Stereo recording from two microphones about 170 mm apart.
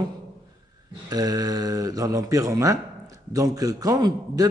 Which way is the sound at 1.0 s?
20° right (ahead or behind).